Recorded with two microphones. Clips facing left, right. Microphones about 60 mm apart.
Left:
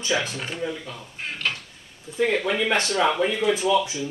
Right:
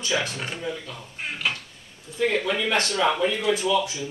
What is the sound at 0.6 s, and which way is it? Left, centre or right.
Speech, centre.